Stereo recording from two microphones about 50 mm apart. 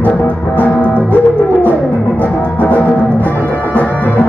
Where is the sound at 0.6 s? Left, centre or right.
Left.